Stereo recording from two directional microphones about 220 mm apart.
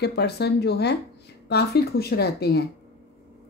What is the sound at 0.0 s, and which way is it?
Speech, 50° left (ahead or behind).